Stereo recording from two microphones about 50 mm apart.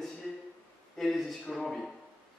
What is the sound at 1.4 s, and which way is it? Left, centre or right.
Speech, centre.